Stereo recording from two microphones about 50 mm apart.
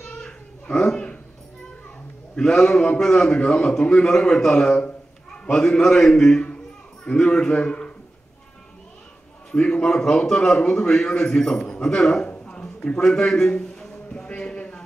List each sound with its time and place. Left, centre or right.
0.2 s babbling: centre
2.3 s a man's voice: centre
9.5 s a man's voice: centre
12.4 s a sound: centre